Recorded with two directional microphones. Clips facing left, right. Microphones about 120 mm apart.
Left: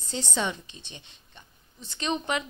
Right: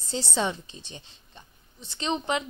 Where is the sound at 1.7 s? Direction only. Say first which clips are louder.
Right 1 dB; 25° right (ahead or behind).